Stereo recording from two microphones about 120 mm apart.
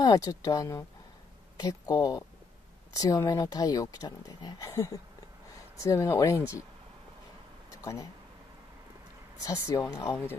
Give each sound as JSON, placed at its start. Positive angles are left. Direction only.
{"t": 0.0, "sound": "speech", "side_deg": 30}
{"t": 7.7, "sound": "speech", "side_deg": 25}
{"t": 9.4, "sound": "speech", "side_deg": 25}